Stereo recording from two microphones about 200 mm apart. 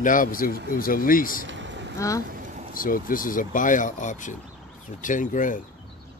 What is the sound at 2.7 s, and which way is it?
Speech, 45° left (ahead or behind).